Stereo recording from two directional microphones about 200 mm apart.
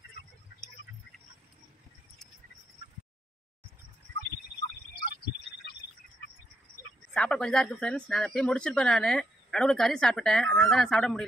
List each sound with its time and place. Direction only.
7.2 s speech: 5° left (ahead or behind)